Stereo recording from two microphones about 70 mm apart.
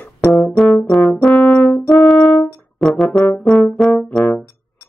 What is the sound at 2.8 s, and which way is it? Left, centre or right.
Brass instrument, centre.